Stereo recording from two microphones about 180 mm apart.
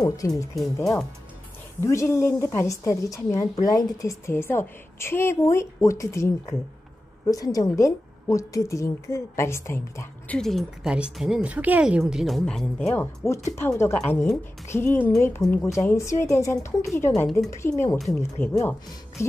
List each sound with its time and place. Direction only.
0.2 s a woman's voice: 15° left (ahead or behind)
17.1 s a woman's voice: 5° left (ahead or behind)
17.5 s a woman's voice: 15° left (ahead or behind)